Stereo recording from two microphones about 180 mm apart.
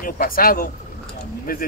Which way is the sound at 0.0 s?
55° left (ahead or behind).